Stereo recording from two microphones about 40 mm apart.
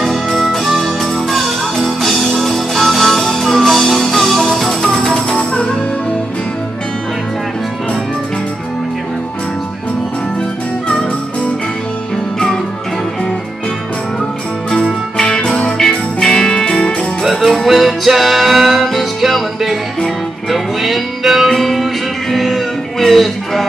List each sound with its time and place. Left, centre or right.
0.0 s music: centre; by 5.7 s left
14.8 s music: centre
17.2 s music: centre